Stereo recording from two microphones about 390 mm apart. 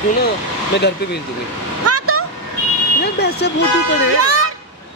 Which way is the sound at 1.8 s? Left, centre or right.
Right.